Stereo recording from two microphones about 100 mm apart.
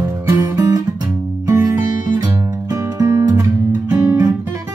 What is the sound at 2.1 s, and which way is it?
Guitar, 40° right (ahead or behind).